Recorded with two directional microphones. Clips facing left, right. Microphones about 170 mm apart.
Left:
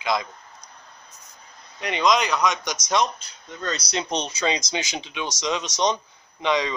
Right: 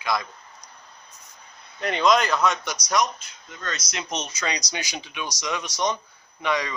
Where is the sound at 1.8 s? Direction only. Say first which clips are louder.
Right 1 dB; centre (ahead or behind).